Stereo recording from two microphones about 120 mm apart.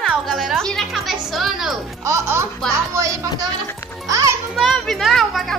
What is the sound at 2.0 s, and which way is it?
A child's voice, 25° right (ahead or behind).